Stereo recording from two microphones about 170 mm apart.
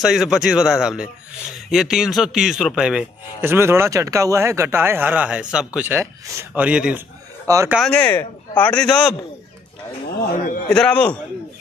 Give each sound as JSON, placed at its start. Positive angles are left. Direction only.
{"t": 0.0, "sound": "a man's voice", "side_deg": 0}
{"t": 7.4, "sound": "speech", "side_deg": -20}
{"t": 7.9, "sound": "speech", "side_deg": 10}
{"t": 10.7, "sound": "speech", "side_deg": 5}